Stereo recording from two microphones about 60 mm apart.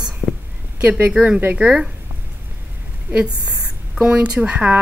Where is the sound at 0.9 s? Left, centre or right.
Right.